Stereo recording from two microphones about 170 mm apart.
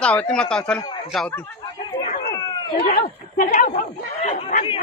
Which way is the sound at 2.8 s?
55° left (ahead or behind).